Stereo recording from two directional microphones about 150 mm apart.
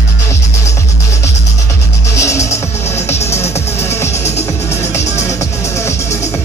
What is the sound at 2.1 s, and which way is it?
Music, 20° left (ahead or behind).